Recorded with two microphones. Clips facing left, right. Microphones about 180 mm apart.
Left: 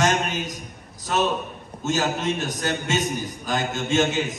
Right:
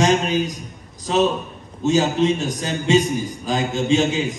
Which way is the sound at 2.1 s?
Centre (ahead or behind).